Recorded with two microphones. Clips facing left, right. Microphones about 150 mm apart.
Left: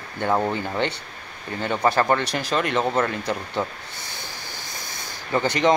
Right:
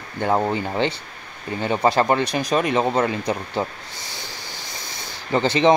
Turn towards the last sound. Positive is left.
turn(degrees=-20)  # may be behind; listen again after turning